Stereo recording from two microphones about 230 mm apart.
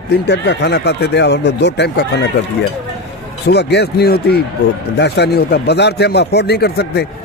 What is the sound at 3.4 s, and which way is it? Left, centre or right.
Speech, left.